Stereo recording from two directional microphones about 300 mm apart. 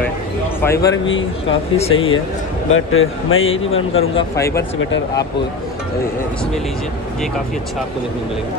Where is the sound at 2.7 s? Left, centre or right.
Left.